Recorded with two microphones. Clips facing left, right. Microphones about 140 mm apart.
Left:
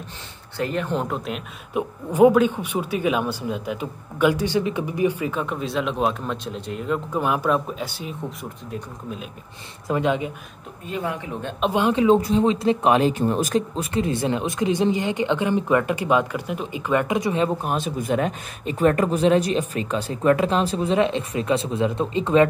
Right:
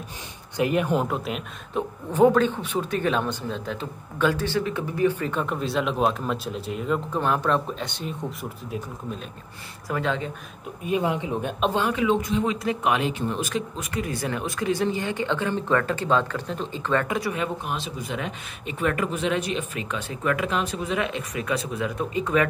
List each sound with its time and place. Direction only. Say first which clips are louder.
0.6 s speech: right 2 dB; 10° right (ahead or behind)
1.0 s speech: even; centre (ahead or behind)
1.7 s speech: left 3 dB; 10° left (ahead or behind)
5.3 s speech: even; centre (ahead or behind)
9.8 s speech: left 5 dB; 20° left (ahead or behind)
10.9 s speech: right 3 dB; 20° right (ahead or behind)
11.9 s speech: left 6 dB; 30° left (ahead or behind)
17.6 s speech: left 7 dB; 50° left (ahead or behind); by 22.5 s 25° left (ahead or behind)